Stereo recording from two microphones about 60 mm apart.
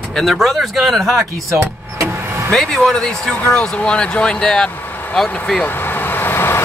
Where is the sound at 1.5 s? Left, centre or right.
Right.